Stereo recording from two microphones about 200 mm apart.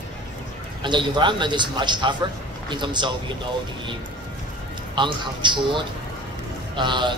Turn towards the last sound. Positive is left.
turn(degrees=-25)  # may be behind; listen again after turning